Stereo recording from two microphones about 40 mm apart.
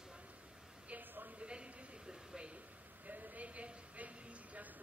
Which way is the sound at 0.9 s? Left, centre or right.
Right.